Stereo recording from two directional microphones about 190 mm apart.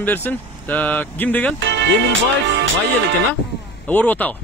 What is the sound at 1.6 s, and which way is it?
Speech, 65° right (ahead or behind).